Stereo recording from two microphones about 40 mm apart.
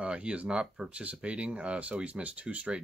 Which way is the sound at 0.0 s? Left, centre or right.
Right.